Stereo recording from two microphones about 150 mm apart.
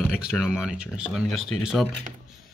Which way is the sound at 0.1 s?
5° right (ahead or behind).